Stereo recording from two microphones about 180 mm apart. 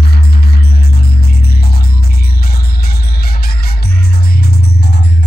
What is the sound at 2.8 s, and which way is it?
Music, 60° left (ahead or behind).